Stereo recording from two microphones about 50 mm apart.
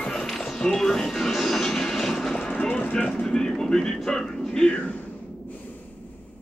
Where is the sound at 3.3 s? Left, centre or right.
Centre.